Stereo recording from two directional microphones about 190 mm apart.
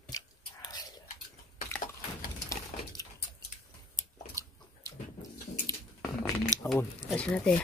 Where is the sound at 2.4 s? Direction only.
20° left (ahead or behind).